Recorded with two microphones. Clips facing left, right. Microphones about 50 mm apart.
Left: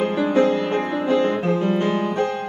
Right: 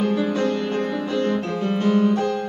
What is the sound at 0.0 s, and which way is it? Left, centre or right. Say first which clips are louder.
Music: left 3 dB; left.